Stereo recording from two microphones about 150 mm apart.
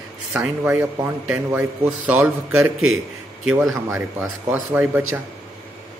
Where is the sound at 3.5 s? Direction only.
5° right (ahead or behind).